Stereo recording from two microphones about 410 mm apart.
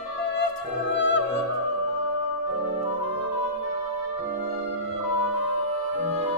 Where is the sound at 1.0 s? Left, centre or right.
Right.